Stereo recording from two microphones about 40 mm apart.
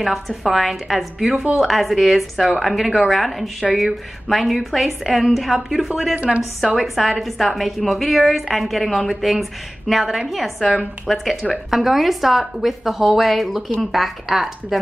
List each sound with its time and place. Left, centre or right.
0.4 s a woman's voice: centre
6.1 s speech: right
6.8 s a woman's voice: centre